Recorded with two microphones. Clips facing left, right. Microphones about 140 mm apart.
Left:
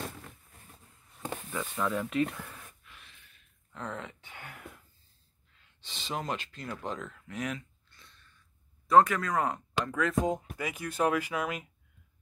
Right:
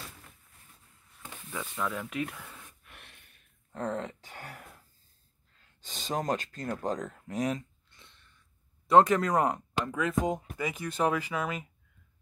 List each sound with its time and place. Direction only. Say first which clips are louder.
1.5 s speech: left 2 dB; centre (ahead or behind)
2.8 s gasp: right 2 dB; 60° right (ahead or behind)
3.7 s a sound: right 6 dB; 40° right (ahead or behind)
5.6 s speech: right 3 dB; 45° right (ahead or behind)
7.9 s a sound: right 1 dB; 25° right (ahead or behind)
8.8 s speech: right 1 dB; 25° right (ahead or behind); by 10.1 s 10° right (ahead or behind)
10.2 s speech: even; 5° left (ahead or behind)